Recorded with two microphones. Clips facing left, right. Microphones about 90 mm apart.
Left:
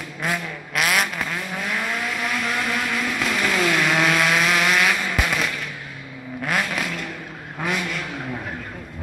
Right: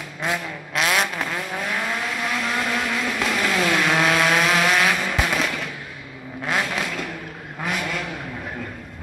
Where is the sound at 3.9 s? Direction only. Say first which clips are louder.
Right 1 dB; 30° right (ahead or behind).